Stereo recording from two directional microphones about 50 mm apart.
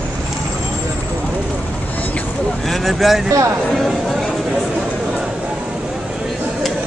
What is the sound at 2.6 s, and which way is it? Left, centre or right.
Speech, centre.